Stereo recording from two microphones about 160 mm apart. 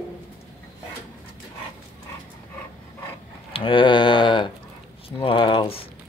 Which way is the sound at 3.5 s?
35° left (ahead or behind).